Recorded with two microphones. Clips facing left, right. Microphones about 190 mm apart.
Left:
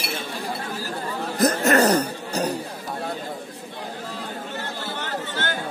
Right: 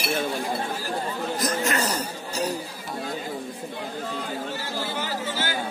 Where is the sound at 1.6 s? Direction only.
65° left (ahead or behind).